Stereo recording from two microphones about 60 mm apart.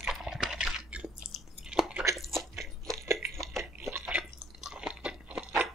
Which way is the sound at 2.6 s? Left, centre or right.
Right.